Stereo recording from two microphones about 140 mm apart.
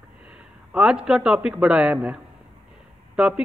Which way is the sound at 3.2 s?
5° right (ahead or behind).